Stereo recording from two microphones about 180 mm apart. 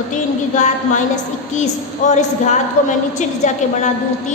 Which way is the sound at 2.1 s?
40° left (ahead or behind).